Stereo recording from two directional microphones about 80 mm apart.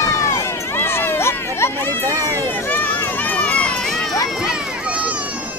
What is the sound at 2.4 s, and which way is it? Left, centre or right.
Run, left.